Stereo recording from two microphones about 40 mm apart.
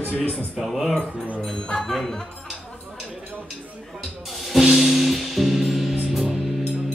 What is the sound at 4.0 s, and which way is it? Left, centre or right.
Music, centre.